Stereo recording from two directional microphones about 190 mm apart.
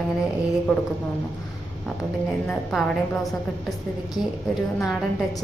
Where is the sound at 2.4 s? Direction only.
5° left (ahead or behind).